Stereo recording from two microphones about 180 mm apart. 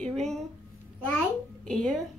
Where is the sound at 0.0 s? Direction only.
Centre (ahead or behind).